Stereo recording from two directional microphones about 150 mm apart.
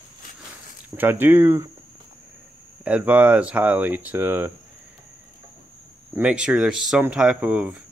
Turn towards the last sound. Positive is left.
turn(degrees=-10)  # may be behind; listen again after turning